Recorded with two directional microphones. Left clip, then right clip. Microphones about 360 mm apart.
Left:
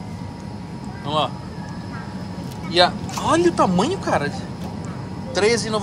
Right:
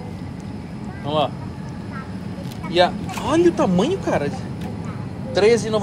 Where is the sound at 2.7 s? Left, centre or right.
Centre.